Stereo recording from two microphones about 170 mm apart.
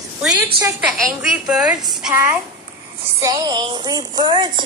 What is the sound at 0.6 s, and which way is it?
A woman's voice, 10° right (ahead or behind).